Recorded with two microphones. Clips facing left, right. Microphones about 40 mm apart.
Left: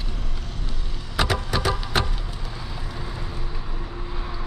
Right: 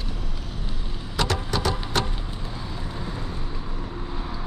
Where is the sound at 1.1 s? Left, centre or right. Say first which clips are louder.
Left 2 dB; centre.